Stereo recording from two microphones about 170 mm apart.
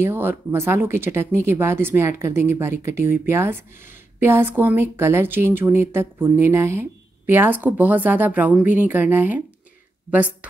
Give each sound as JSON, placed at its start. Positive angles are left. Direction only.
{"t": 0.0, "sound": "speech", "side_deg": -15}